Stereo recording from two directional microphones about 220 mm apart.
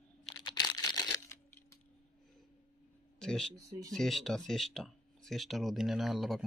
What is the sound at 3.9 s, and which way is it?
Speech, centre (ahead or behind).